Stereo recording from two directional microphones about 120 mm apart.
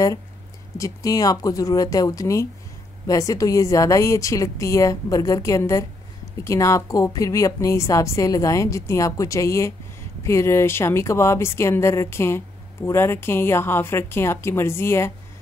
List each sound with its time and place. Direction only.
0.7 s a woman's voice: 30° left (ahead or behind)